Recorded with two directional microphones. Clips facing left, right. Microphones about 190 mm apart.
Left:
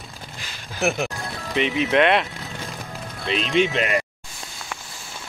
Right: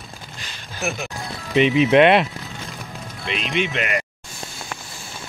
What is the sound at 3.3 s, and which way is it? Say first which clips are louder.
Speech: left 4 dB; 35° left (ahead or behind).